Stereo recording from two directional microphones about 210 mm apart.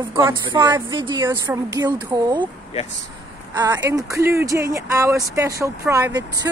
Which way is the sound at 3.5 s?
15° right (ahead or behind).